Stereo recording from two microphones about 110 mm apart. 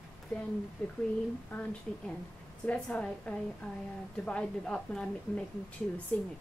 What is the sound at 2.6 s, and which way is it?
A woman's voice, 10° left (ahead or behind).